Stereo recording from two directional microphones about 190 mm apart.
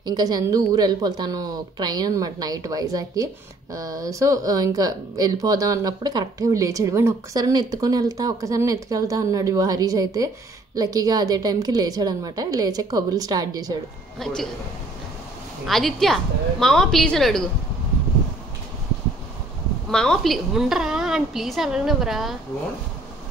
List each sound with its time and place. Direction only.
0.0 s a woman's voice: 20° right (ahead or behind)
14.2 s a woman's voice: centre (ahead or behind)
15.6 s a woman's voice: centre (ahead or behind)
19.9 s a woman's voice: 5° left (ahead or behind)